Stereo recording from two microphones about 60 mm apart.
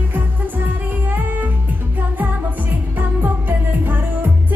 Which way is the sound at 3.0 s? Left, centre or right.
Right.